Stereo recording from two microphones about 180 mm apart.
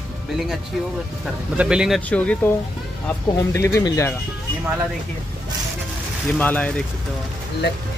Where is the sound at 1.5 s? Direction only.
5° right (ahead or behind).